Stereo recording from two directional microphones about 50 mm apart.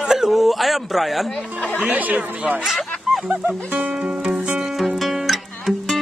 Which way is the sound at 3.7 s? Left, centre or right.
Right.